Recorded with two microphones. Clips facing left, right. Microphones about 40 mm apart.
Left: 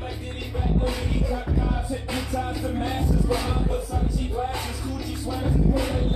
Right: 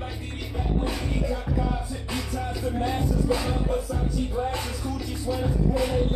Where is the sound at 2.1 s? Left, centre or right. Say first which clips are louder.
Left 1 dB; left.